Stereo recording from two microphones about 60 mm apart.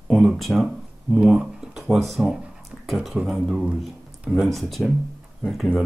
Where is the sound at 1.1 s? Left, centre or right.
Centre.